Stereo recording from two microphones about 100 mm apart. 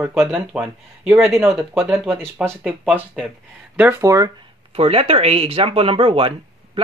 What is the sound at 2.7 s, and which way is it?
Speech, 15° right (ahead or behind).